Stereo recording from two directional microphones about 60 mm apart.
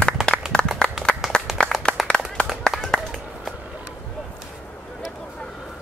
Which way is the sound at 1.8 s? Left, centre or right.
Centre.